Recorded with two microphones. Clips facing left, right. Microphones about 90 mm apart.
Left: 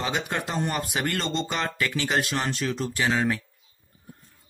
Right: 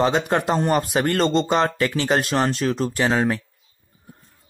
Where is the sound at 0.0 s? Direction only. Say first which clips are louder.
Right 9 dB; 40° right (ahead or behind).